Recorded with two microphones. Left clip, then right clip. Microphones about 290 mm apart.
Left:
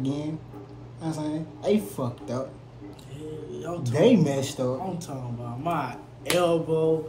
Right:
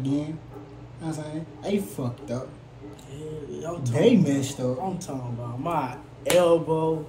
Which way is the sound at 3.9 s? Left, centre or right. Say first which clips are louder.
Even; centre.